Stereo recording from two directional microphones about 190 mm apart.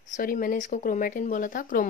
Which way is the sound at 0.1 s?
45° left (ahead or behind).